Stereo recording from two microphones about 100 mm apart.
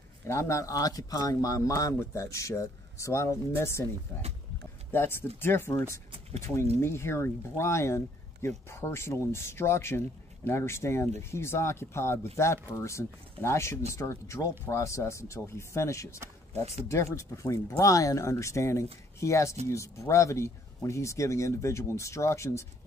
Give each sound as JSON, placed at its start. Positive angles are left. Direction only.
{"t": 0.3, "sound": "speech", "side_deg": 30}
{"t": 4.9, "sound": "speech", "side_deg": 25}